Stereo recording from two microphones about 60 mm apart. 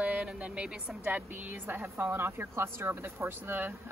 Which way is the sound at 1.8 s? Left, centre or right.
Right.